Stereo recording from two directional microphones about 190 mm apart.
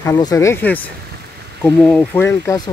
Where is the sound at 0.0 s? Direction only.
15° left (ahead or behind).